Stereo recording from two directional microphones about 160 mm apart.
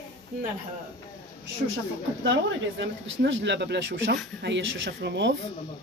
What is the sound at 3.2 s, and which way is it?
Speech, 90° right.